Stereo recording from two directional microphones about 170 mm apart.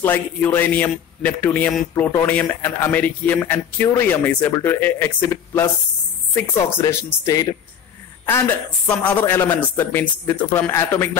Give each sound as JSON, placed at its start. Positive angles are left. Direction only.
{"t": 0.0, "sound": "speech", "side_deg": 10}
{"t": 8.8, "sound": "speech", "side_deg": 10}